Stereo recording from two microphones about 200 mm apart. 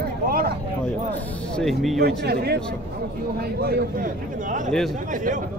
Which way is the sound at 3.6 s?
45° right (ahead or behind).